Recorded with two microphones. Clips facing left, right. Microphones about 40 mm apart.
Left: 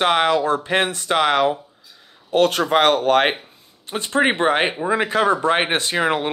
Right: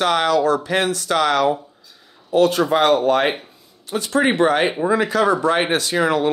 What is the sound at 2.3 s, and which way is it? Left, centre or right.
Speech, left.